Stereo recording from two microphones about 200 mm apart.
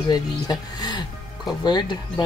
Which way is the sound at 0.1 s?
20° left (ahead or behind).